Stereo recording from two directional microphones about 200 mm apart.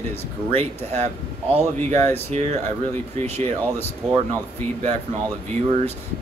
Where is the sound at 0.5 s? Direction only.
35° right (ahead or behind).